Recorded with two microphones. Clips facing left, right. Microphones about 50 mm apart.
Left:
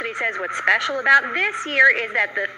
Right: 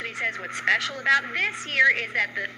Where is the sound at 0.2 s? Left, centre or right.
Left.